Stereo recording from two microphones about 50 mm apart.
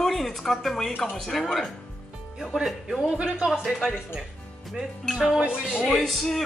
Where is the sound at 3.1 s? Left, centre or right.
Right.